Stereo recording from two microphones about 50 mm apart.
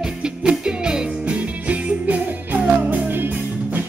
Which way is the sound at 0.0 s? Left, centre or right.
Centre.